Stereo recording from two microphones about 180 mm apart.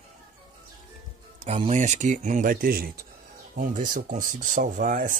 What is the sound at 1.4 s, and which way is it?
Speech, 35° right (ahead or behind).